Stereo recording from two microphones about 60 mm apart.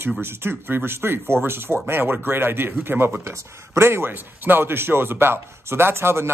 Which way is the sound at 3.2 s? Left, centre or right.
Right.